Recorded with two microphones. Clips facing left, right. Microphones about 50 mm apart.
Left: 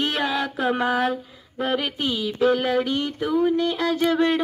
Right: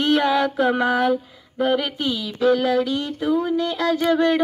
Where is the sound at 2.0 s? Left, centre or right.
Centre.